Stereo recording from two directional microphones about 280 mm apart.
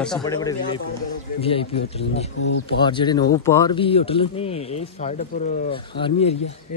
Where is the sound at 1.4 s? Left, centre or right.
Centre.